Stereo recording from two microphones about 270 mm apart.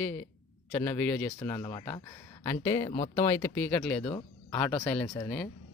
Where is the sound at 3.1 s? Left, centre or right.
Centre.